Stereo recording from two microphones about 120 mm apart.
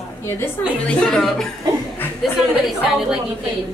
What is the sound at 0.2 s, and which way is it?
Speech, 25° left (ahead or behind).